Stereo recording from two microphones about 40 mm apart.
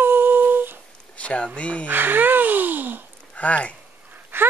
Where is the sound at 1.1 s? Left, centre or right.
Left.